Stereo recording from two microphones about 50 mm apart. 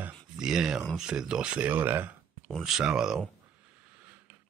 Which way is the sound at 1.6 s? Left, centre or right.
Right.